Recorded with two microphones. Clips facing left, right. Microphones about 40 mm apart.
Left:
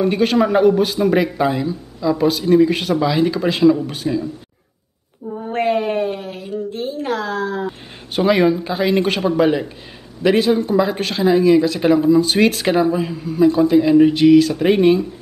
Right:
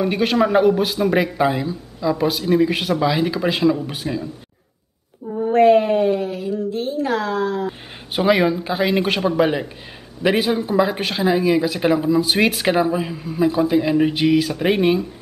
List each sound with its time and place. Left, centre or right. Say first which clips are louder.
0.0 s speech: left 2 dB; centre
6.1 s a sound: right 4 dB; left
8.2 s speech: left 2 dB; centre